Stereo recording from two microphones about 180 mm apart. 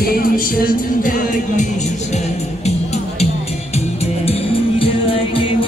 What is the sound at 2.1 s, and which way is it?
Music, 40° left (ahead or behind).